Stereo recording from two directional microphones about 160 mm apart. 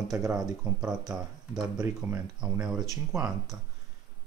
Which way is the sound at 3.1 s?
20° right (ahead or behind).